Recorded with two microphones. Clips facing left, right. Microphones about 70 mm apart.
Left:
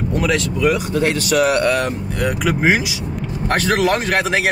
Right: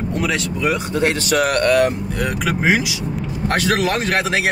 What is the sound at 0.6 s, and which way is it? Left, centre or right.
Speech, right.